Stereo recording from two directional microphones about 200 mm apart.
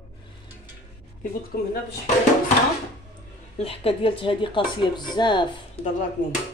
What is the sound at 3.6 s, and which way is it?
Speech, 30° left (ahead or behind).